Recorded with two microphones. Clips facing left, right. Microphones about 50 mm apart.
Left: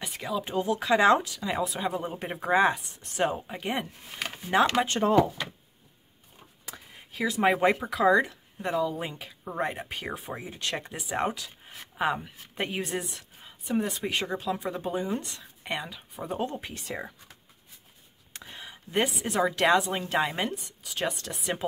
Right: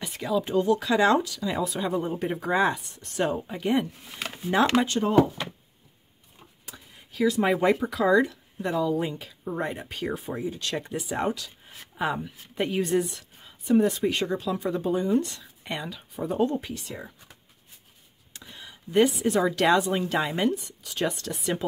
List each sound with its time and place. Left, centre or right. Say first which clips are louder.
0.0 s a sound: right 4 dB; centre
0.4 s speech: right 5 dB; centre
4.9 s speech: even; left
6.7 s a sound: left 1 dB; left
7.1 s speech: right 2 dB; centre
10.3 s speech: right 4 dB; left
10.7 s speech: right 2 dB; centre
14.0 s speech: right 3 dB; centre
18.3 s a sound: left 2 dB; left
19.4 s speech: left 1 dB; centre